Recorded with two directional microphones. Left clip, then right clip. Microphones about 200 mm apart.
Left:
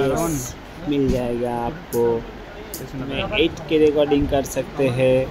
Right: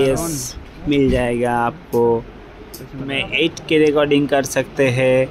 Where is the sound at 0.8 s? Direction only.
15° right (ahead or behind).